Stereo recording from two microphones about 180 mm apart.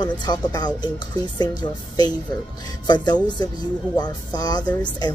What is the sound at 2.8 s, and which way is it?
Speech, 25° left (ahead or behind).